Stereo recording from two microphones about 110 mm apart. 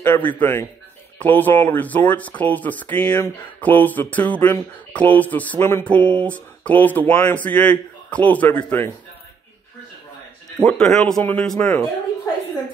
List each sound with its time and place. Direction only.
0.0 s a man's voice: 20° left (ahead or behind)
10.6 s speech: 10° left (ahead or behind)